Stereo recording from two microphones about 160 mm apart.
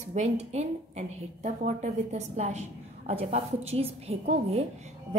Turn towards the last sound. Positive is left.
turn(degrees=-45)  # may be behind; listen again after turning